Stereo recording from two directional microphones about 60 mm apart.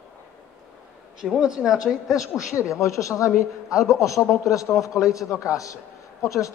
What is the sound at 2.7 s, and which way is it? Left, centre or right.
Speech, left.